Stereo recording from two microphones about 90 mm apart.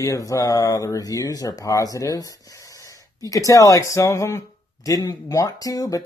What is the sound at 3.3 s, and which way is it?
Speech, 40° left (ahead or behind).